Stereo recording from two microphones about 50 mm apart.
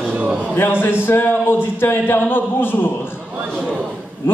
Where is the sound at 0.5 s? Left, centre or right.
Left.